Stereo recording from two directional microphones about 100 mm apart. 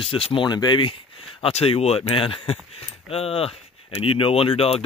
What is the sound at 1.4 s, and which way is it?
Speech, 80° left.